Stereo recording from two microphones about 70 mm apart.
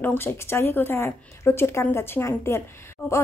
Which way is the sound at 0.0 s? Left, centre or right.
Left.